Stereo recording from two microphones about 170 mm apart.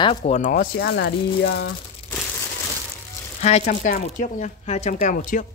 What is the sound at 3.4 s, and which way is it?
Speech, 45° left (ahead or behind).